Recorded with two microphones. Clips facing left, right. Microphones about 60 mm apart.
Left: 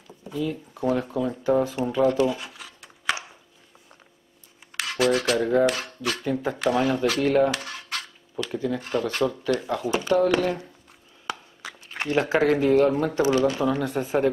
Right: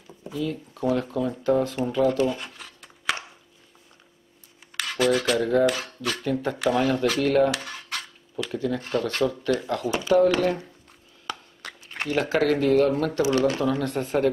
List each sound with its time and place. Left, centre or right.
0.3 s speech: centre
2.1 s a sound: centre
4.7 s speech: centre
10.0 s speech: centre
10.3 s speech: centre
11.2 s a sound: centre
12.3 s speech: centre